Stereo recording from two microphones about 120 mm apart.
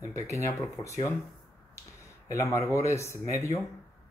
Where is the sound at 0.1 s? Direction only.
25° left (ahead or behind).